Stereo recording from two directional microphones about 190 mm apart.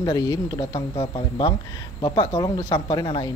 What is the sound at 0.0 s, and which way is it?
A woman's voice, 20° left (ahead or behind).